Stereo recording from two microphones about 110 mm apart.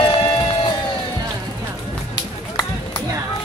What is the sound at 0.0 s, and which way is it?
Run, 50° left (ahead or behind).